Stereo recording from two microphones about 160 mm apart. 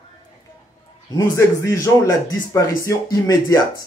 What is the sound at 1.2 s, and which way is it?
Speech, 20° left (ahead or behind).